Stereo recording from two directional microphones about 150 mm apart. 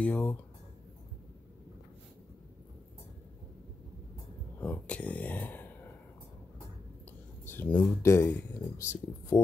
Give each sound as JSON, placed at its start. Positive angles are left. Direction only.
{"t": 0.0, "sound": "speech", "side_deg": 10}
{"t": 4.6, "sound": "speech", "side_deg": 10}
{"t": 7.4, "sound": "speech", "side_deg": 15}